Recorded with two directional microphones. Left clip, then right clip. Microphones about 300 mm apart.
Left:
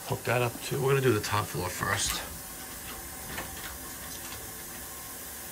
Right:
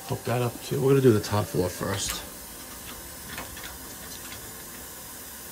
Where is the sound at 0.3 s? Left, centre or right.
Centre.